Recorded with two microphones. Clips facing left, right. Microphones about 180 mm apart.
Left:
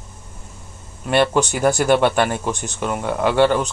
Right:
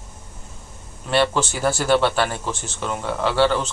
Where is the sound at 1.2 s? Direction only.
15° left (ahead or behind).